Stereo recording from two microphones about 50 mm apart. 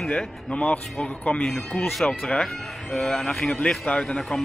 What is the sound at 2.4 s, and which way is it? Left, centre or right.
Speech, centre.